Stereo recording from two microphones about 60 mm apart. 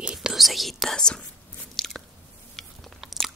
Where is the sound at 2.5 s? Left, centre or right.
Centre.